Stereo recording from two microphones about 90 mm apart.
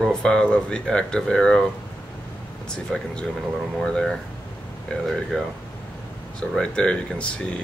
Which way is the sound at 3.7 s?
10° left (ahead or behind).